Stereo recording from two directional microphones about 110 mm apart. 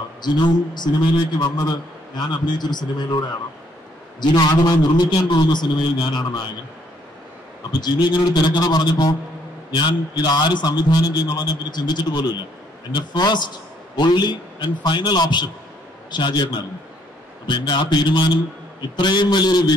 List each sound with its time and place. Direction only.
0.2 s a man's voice: 40° left (ahead or behind)
7.8 s a man's voice: 40° left (ahead or behind)
17.5 s a man's voice: 45° left (ahead or behind)